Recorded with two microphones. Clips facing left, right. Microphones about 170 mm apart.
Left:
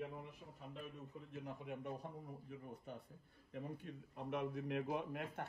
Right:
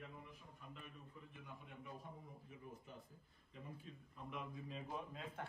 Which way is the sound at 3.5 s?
70° left (ahead or behind).